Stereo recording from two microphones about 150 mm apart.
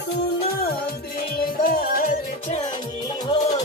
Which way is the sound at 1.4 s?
70° left (ahead or behind).